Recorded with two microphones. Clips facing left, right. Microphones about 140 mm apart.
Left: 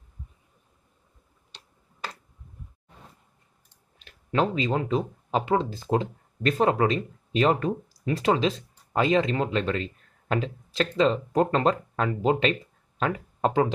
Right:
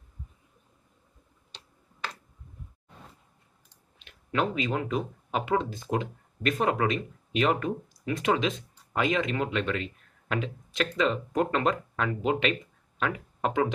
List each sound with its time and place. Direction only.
4.0 s speech: 35° left (ahead or behind)